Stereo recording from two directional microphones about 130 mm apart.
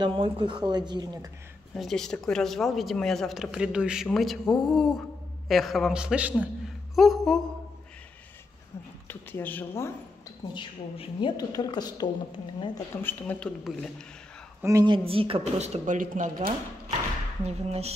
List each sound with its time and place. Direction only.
0.0 s speech: 40° right (ahead or behind)
1.8 s a man's voice: 5° left (ahead or behind)
9.0 s speech: 15° left (ahead or behind)
10.5 s a woman's voice: 35° left (ahead or behind)
12.9 s speech: 15° left (ahead or behind)
14.6 s a woman's voice: 25° right (ahead or behind)
14.9 s speech: 45° right (ahead or behind); by 16.5 s 80° right
17.5 s speech: 55° right (ahead or behind)